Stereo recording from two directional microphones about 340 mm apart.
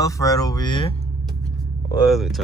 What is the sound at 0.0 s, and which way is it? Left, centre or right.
Speech, centre.